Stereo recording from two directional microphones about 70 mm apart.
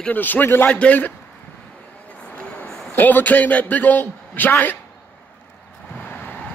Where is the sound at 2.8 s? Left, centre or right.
Left.